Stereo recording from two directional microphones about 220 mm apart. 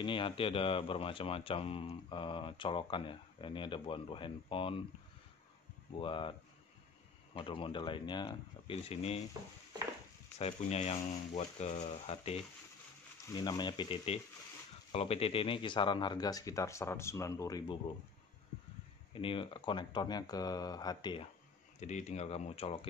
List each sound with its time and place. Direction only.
0.0 s speech: 25° left (ahead or behind)
5.9 s speech: 20° left (ahead or behind)
7.3 s speech: 25° left (ahead or behind)
10.4 s speech: 30° left (ahead or behind)
19.1 s speech: 25° left (ahead or behind)
21.7 s speech: 30° left (ahead or behind)